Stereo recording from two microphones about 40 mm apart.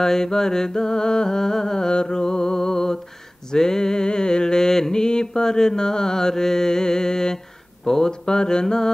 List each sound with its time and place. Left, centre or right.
0.0 s mantra: centre